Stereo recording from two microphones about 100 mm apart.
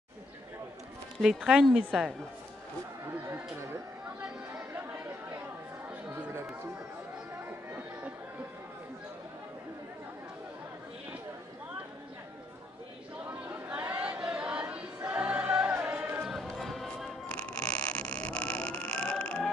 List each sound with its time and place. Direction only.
1.2 s speech: 5° right (ahead or behind)
6.0 s chatter: 25° right (ahead or behind)
13.5 s chatter: 15° right (ahead or behind)
15.0 s choir: 15° right (ahead or behind)
16.3 s music: centre (ahead or behind)